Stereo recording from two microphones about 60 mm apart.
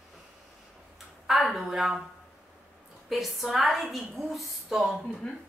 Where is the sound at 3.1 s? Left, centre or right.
Centre.